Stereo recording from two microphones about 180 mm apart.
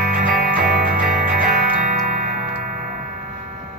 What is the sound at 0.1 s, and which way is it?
Music, 50° right (ahead or behind).